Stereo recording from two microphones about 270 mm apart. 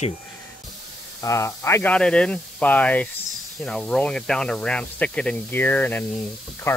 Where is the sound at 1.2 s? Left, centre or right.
Centre.